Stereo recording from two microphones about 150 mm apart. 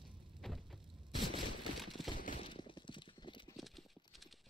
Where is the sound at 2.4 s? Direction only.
35° left (ahead or behind).